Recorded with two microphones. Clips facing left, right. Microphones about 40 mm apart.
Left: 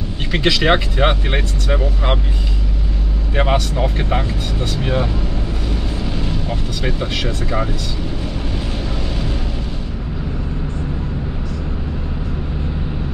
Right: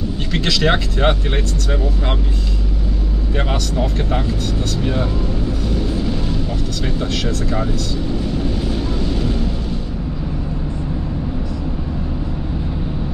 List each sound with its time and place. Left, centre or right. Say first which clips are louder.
0.3 s speech: left 3 dB; centre
3.3 s speech: left 4 dB; left
7.0 s speech: right 1 dB; centre